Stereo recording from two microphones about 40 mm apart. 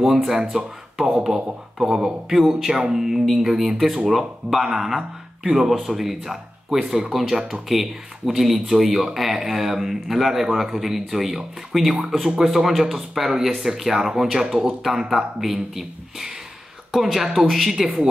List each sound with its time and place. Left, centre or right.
0.0 s speech: centre
0.4 s speech: right
1.2 s speech: centre